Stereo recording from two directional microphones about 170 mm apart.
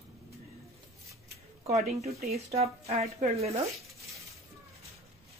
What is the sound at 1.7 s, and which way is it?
A woman's voice, 40° right (ahead or behind).